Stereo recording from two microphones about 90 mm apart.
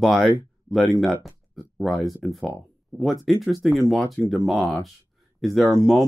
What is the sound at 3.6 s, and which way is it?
Speech, centre (ahead or behind).